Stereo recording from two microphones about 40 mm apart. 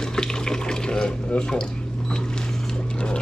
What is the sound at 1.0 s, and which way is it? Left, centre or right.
Speech, left.